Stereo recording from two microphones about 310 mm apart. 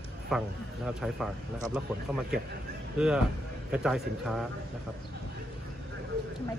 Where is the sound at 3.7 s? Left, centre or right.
Centre.